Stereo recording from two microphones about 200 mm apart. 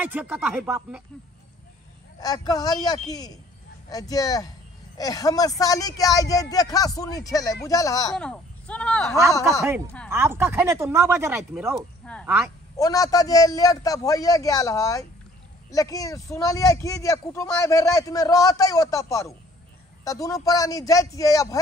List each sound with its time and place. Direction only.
0.0 s speech: 5° right (ahead or behind)
2.1 s speech: 20° left (ahead or behind)
8.2 s speech: 5° left (ahead or behind)
10.0 s speech: 10° right (ahead or behind)
11.7 s speech: 5° left (ahead or behind)
12.7 s speech: 15° left (ahead or behind)